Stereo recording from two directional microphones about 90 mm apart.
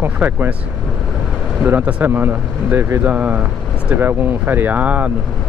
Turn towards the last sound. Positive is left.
turn(degrees=-15)  # may be behind; listen again after turning